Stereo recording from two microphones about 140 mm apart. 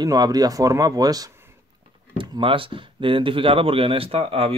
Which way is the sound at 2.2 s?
35° right (ahead or behind).